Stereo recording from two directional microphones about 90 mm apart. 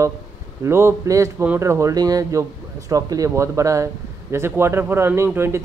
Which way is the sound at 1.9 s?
45° right (ahead or behind).